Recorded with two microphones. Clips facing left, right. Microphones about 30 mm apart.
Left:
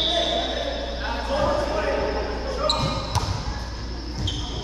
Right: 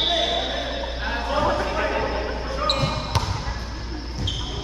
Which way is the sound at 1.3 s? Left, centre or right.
Centre.